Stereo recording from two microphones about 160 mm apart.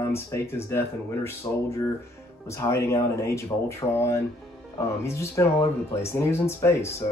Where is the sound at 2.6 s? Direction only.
20° left (ahead or behind).